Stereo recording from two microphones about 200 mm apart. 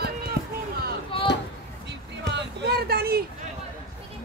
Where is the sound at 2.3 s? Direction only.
55° right (ahead or behind).